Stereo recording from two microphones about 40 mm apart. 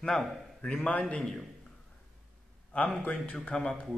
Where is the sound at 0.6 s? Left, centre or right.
Left.